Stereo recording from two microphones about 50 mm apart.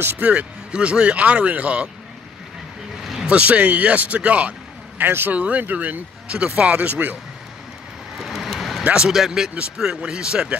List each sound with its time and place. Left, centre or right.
0.2 s speech: right
3.3 s a man's voice: right
5.0 s speech: right
5.4 s speech: right
6.3 s speech: right
8.2 s vehicle: centre
8.8 s speech: centre
9.1 s speech: centre